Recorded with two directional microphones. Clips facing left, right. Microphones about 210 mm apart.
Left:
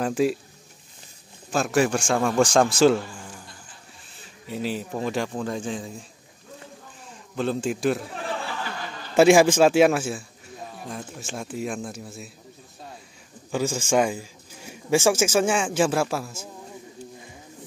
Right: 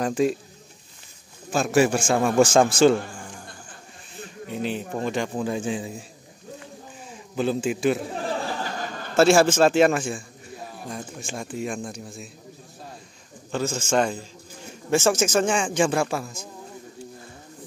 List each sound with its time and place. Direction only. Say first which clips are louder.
0.0 s speech: even; 5° left (ahead or behind)
1.5 s speech: right 2 dB; centre (ahead or behind)
4.6 s speech: even; 5° left (ahead or behind)
7.3 s speech: right 2 dB; 5° right (ahead or behind)
8.3 s a sound: right 1 dB; 40° right (ahead or behind)
9.1 s a man's voice: left 2 dB; 15° left (ahead or behind)
13.5 s a man's voice: left 1 dB; 10° left (ahead or behind)